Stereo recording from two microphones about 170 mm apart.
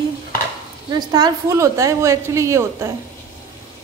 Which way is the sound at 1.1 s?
20° right (ahead or behind).